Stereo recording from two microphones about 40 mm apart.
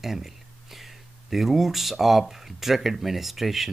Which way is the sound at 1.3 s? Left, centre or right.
Centre.